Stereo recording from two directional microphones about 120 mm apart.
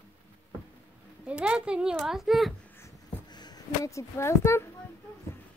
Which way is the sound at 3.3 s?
35° left (ahead or behind).